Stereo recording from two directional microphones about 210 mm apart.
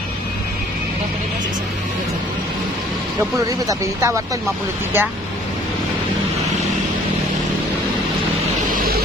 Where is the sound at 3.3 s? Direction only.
15° right (ahead or behind).